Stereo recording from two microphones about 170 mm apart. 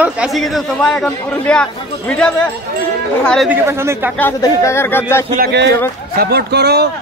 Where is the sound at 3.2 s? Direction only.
5° left (ahead or behind).